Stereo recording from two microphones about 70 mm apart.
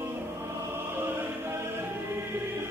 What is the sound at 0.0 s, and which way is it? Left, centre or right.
Music, right.